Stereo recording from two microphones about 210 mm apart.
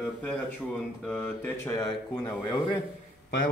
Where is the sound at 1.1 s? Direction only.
10° left (ahead or behind).